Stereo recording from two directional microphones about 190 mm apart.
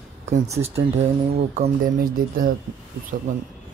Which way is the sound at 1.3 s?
35° right (ahead or behind).